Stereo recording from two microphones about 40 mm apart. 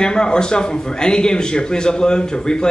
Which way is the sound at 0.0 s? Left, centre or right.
Centre.